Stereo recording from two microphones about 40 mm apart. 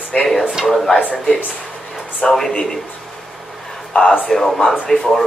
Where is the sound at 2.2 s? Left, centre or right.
Left.